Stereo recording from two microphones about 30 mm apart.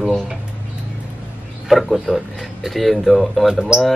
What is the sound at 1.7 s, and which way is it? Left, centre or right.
Speech, centre.